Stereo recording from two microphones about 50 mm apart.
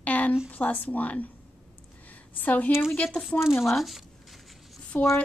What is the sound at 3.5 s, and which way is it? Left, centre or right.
Speech, left.